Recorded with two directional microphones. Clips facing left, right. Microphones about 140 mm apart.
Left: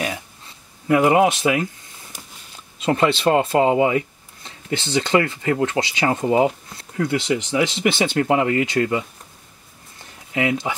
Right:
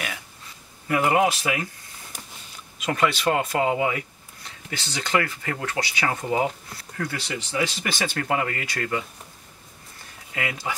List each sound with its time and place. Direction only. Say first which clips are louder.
0.8 s speech: left 5 dB; 25° left (ahead or behind)
2.8 s speech: left 5 dB; 25° left (ahead or behind)
10.3 s speech: left 9 dB; 20° left (ahead or behind)